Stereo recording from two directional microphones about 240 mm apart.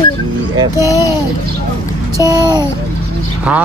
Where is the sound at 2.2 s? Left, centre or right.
Centre.